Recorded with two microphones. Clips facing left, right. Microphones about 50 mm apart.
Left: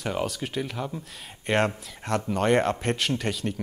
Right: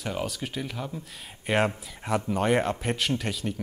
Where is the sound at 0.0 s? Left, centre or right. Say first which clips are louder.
Left 3 dB; centre.